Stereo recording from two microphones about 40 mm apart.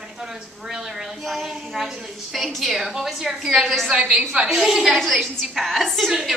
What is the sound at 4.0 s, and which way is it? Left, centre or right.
Speech, right.